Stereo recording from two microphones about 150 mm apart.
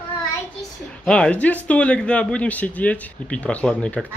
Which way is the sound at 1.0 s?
5° left (ahead or behind).